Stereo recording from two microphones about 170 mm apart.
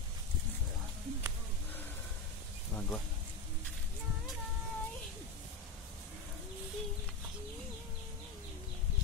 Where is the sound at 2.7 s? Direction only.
15° left (ahead or behind).